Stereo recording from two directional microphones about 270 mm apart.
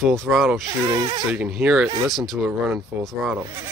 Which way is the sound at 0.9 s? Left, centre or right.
Centre.